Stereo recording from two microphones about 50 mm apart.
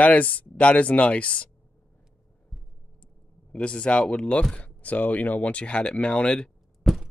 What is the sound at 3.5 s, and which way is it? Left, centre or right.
Speech, left.